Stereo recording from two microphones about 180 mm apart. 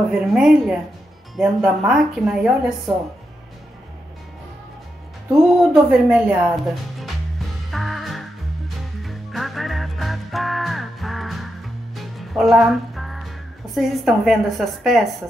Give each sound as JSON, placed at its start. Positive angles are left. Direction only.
{"t": 0.1, "sound": "speech", "side_deg": -5}
{"t": 5.3, "sound": "music", "side_deg": -5}
{"t": 13.7, "sound": "speech", "side_deg": 0}